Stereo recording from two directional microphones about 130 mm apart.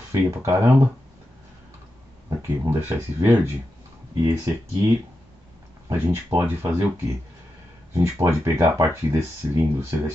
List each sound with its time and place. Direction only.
0.1 s speech: 20° right (ahead or behind)
2.2 s speech: 25° right (ahead or behind)
7.9 s speech: 20° right (ahead or behind)